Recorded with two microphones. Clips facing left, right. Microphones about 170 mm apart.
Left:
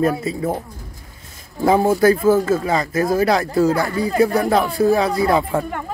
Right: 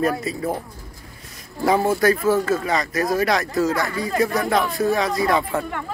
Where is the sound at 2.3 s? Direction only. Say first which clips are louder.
Left 3 dB; 10° left (ahead or behind).